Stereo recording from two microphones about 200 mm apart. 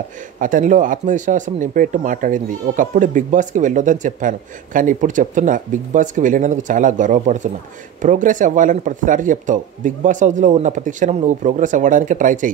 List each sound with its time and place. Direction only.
0.4 s speech: 40° right (ahead or behind)